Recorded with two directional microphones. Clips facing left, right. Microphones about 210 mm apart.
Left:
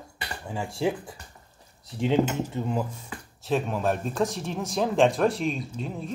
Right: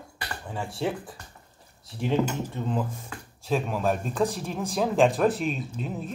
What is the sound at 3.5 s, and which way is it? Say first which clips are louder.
Speech: even; centre (ahead or behind).